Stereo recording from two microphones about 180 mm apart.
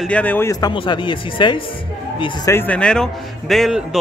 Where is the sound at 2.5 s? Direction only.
10° left (ahead or behind).